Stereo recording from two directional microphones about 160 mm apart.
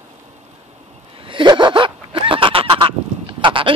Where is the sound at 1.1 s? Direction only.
30° right (ahead or behind).